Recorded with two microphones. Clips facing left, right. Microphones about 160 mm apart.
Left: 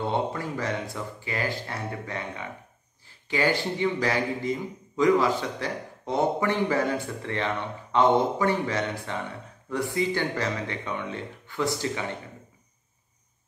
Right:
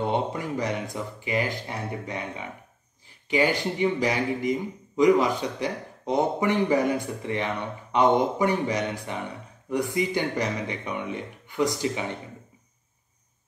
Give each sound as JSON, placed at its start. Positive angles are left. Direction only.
{"t": 0.0, "sound": "speech", "side_deg": -20}